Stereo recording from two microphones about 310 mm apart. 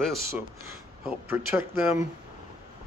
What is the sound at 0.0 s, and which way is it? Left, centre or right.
Speech, centre.